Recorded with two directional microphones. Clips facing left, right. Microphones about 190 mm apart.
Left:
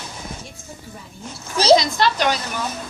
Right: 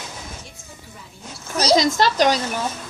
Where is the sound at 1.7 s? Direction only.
45° right (ahead or behind).